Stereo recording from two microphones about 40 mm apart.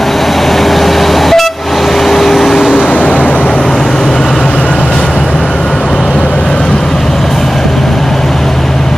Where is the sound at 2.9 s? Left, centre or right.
Left.